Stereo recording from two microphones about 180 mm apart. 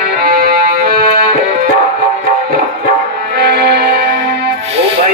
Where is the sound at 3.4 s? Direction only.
65° right (ahead or behind).